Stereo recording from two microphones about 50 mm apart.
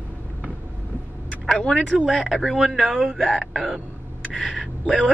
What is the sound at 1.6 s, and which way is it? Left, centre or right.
Speech, centre.